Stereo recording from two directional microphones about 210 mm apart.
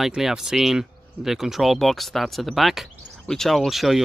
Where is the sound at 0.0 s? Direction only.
5° right (ahead or behind).